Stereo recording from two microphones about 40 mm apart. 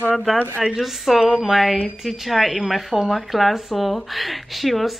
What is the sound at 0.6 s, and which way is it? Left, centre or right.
Speech, centre.